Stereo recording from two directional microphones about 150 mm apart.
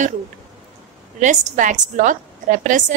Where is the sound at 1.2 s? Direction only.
55° right (ahead or behind).